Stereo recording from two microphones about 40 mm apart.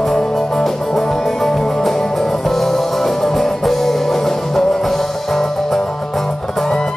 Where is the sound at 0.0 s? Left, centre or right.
Centre.